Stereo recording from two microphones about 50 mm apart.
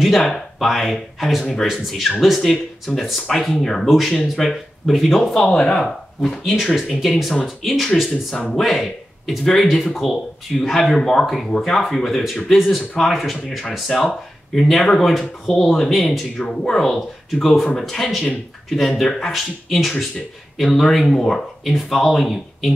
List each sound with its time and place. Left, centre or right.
0.2 s speech: centre
5.5 s speech: centre
6.4 s speech: centre
16.1 s speech: centre